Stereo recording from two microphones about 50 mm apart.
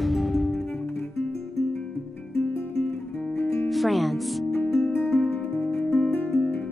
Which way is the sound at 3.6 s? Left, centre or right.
Centre.